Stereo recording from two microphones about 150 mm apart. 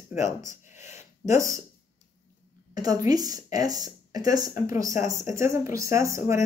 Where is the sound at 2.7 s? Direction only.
25° right (ahead or behind).